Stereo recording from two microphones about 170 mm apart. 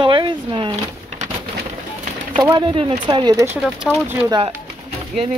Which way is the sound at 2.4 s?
25° right (ahead or behind).